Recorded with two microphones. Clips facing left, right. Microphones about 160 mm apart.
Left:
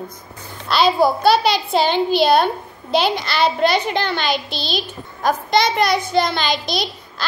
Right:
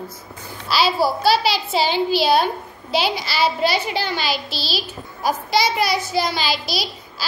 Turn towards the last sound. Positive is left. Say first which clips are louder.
# left 3 dB
turn(degrees=-5)  # may be behind; listen again after turning